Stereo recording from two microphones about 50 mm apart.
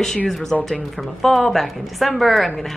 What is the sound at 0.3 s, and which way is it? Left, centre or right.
Speech, centre.